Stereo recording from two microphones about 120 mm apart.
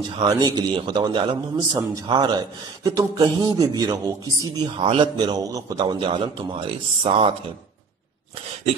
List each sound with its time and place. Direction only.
0.1 s a man's voice: 35° right (ahead or behind)
4.7 s a man's voice: 45° right (ahead or behind)